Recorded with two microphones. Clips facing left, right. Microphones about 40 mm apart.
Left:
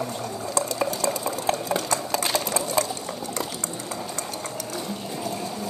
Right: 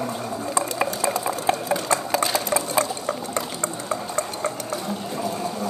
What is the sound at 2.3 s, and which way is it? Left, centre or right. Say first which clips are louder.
Sewing machine: right 2 dB; centre.